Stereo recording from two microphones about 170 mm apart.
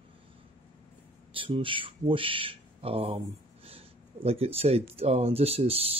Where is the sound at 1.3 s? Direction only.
30° right (ahead or behind).